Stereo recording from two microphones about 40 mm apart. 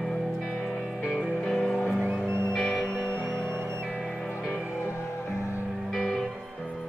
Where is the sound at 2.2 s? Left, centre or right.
Right.